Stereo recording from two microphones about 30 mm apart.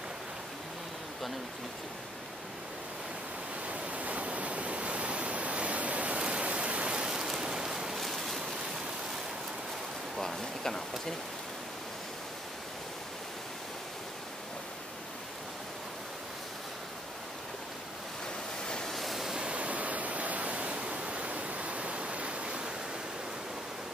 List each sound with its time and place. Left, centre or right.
3.6 s waterfall: right
7.1 s rain: centre
8.0 s a sound: centre
10.6 s speech: centre
18.9 s waves: centre
19.5 s ocean: right
20.8 s waves: right